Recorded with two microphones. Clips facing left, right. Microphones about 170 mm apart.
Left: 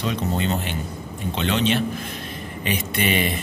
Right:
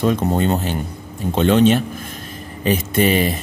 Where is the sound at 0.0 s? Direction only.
50° right (ahead or behind).